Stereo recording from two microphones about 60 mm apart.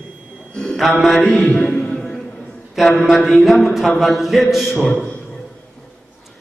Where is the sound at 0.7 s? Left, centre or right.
Centre.